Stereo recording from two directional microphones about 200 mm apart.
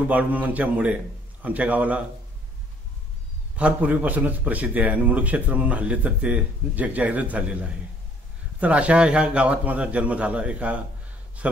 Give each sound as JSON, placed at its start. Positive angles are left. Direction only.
{"t": 0.1, "sound": "a man's voice", "side_deg": -10}
{"t": 3.5, "sound": "a man's voice", "side_deg": -5}